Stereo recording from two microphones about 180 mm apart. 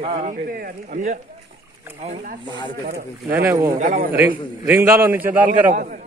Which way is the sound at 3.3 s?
15° right (ahead or behind).